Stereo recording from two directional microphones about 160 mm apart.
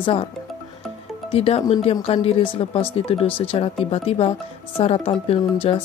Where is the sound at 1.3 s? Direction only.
35° left (ahead or behind).